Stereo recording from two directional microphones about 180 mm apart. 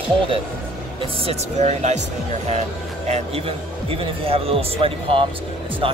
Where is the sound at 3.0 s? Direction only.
35° right (ahead or behind).